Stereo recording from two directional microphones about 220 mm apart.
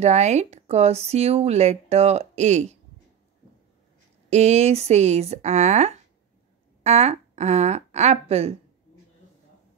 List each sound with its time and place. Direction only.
0.0 s speech: 30° right (ahead or behind)
4.3 s speech: 30° right (ahead or behind)